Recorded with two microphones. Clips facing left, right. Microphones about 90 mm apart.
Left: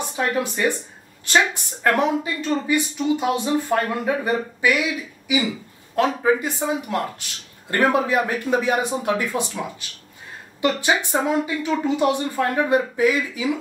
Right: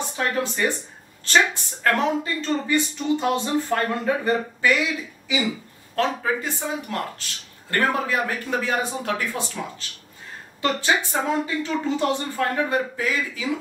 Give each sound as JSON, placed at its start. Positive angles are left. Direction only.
{"t": 0.1, "sound": "speech", "side_deg": 15}
{"t": 5.9, "sound": "speech", "side_deg": 15}